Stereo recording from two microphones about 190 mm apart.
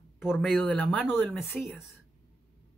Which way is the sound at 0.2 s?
Centre (ahead or behind).